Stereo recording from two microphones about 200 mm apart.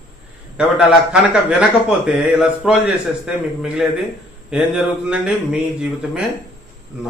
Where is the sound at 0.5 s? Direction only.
5° right (ahead or behind).